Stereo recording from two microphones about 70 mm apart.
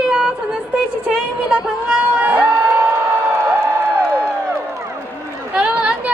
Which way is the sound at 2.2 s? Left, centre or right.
Right.